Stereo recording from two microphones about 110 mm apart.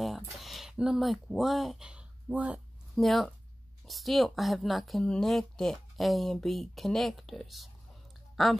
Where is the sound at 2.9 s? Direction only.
Centre (ahead or behind).